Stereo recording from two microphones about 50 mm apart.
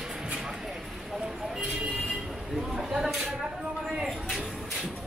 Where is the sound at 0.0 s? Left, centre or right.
Centre.